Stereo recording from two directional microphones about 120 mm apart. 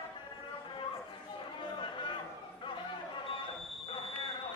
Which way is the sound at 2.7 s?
45° left (ahead or behind).